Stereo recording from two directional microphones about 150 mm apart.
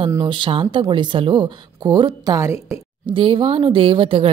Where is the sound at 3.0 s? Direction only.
35° right (ahead or behind).